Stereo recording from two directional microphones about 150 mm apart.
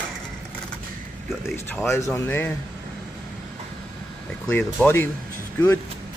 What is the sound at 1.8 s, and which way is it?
Speech, 15° left (ahead or behind).